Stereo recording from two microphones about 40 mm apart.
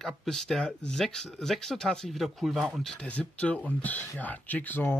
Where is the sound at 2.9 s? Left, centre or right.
Left.